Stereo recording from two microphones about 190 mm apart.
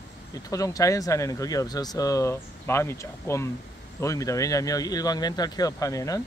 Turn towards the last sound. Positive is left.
turn(degrees=15)  # may be behind; listen again after turning